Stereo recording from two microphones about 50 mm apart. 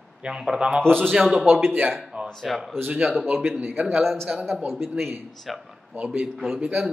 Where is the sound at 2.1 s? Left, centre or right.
Right.